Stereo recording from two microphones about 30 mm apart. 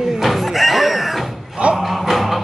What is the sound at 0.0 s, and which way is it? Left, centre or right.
Music, centre.